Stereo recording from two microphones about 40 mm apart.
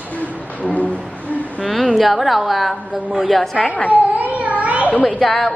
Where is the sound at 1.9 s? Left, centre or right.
Centre.